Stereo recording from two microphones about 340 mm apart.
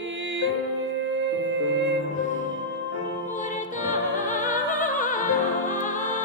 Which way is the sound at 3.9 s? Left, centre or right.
Left.